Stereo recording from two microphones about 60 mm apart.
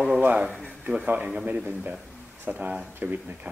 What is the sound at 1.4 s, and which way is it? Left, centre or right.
Speech, right.